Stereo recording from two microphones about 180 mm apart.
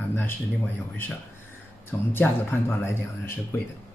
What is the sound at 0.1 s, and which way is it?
Speech, 10° left (ahead or behind).